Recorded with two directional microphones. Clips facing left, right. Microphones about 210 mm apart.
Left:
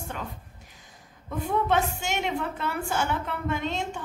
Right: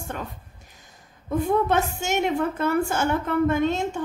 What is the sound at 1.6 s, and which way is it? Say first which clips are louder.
A woman's voice: right 2 dB; 45° right (ahead or behind).